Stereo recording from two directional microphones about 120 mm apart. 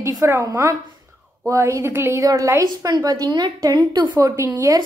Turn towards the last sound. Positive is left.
turn(degrees=-25)  # may be behind; listen again after turning